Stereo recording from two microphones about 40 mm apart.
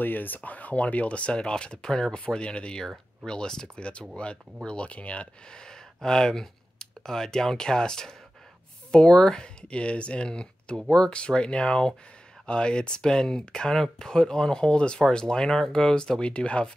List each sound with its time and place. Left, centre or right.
0.0 s speech: left
5.5 s speech: centre